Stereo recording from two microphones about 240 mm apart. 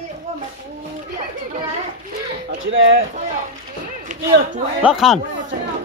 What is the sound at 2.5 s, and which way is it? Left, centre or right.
Speech, right.